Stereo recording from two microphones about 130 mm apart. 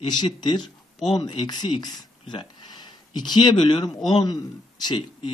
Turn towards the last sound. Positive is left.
turn(degrees=35)  # may be behind; listen again after turning